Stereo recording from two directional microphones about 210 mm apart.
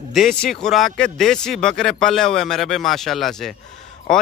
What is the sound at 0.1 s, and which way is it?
Speech, centre (ahead or behind).